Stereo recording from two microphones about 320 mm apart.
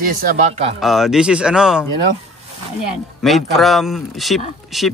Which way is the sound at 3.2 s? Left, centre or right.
Centre.